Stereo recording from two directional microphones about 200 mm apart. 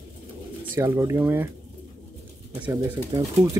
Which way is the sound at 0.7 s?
15° right (ahead or behind).